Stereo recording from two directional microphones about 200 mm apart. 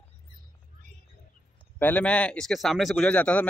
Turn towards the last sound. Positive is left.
turn(degrees=5)  # may be behind; listen again after turning